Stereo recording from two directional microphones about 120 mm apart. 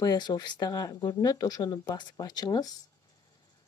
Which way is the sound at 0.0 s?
30° left (ahead or behind).